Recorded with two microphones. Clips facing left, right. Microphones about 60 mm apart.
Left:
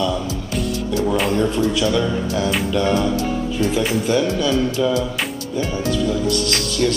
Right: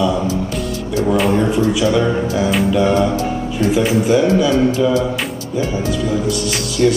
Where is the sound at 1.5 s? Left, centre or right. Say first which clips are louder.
Right 4 dB; centre.